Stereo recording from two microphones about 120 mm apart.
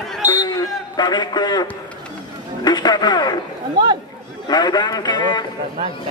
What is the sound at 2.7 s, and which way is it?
Speech, 35° left (ahead or behind).